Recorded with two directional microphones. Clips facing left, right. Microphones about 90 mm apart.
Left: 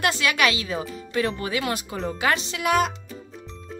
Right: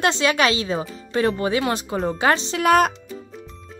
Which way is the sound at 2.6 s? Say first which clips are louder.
Right 5 dB; 50° right (ahead or behind).